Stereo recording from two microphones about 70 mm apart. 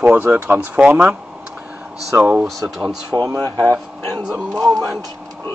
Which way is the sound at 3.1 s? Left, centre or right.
Right.